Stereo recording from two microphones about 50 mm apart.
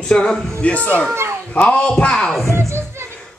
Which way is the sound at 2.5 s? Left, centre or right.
Right.